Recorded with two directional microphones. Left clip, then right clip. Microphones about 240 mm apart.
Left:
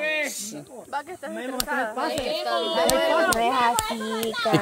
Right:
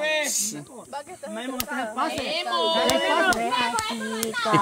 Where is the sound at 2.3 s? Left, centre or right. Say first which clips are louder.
Right 4 dB; right.